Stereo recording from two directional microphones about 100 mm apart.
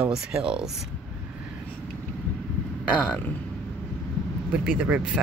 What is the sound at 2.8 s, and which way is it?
Speech, 15° left (ahead or behind).